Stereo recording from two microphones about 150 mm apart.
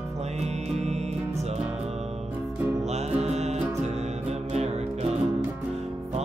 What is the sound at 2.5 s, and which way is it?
Music, 10° right (ahead or behind).